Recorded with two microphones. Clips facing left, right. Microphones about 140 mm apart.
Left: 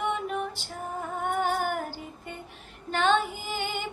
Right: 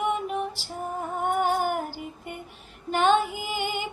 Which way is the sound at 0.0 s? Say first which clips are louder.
Right 2 dB; 5° right (ahead or behind).